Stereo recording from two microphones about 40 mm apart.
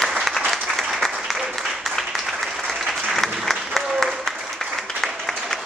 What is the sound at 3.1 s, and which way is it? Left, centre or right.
Applause, centre.